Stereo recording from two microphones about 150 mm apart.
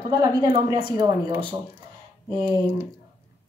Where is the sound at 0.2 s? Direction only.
35° right (ahead or behind).